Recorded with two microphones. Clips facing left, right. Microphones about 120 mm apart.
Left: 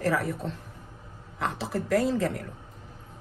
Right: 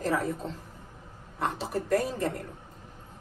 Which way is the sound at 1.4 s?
90° left.